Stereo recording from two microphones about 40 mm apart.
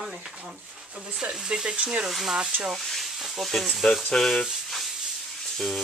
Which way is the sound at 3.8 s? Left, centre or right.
Centre.